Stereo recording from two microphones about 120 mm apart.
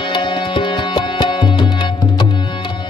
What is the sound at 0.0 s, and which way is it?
Music, 40° left (ahead or behind).